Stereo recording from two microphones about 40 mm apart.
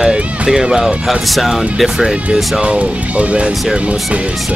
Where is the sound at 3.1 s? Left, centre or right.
Right.